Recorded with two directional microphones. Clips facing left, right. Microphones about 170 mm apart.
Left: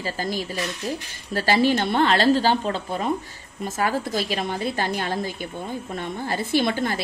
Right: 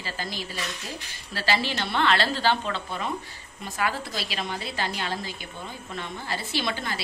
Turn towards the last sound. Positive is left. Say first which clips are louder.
# left 8 dB
turn(degrees=50)  # may be behind; listen again after turning